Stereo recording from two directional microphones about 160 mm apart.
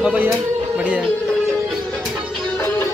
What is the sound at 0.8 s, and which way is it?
Music, 5° right (ahead or behind).